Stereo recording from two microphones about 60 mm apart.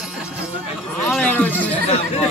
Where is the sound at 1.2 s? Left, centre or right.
Left.